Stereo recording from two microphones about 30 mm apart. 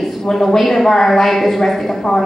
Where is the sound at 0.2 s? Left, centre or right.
Centre.